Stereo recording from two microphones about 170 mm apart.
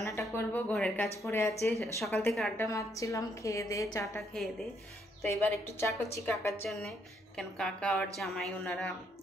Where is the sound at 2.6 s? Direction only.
20° left (ahead or behind).